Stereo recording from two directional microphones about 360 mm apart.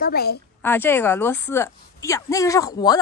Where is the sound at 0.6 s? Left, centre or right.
Centre.